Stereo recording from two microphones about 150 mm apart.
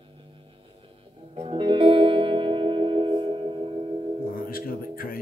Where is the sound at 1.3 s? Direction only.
35° right (ahead or behind).